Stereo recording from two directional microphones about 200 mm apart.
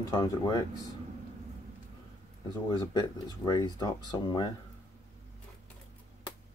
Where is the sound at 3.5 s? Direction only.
20° left (ahead or behind).